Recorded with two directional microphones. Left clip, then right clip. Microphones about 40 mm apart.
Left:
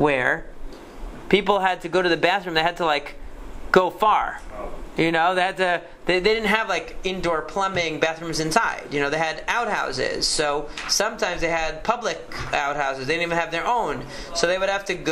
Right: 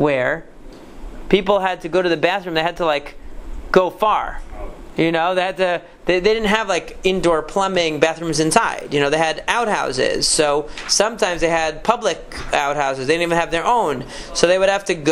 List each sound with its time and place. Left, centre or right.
0.0 s a man's voice: centre
6.4 s speech: right